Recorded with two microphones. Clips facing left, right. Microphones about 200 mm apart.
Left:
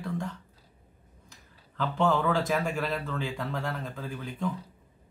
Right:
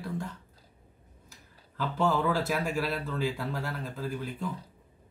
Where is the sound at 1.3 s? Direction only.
5° right (ahead or behind).